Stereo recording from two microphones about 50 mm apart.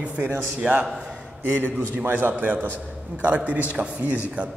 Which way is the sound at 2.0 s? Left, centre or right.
Right.